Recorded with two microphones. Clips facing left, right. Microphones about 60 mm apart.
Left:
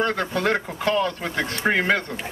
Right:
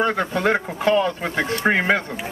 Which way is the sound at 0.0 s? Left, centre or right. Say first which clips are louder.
Right 2 dB; centre.